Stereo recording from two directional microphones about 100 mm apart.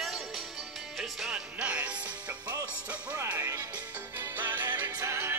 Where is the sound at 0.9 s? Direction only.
5° right (ahead or behind).